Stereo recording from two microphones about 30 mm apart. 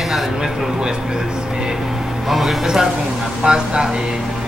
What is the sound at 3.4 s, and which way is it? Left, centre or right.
Speech, right.